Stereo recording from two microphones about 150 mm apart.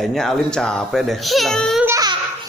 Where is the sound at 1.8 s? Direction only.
25° right (ahead or behind).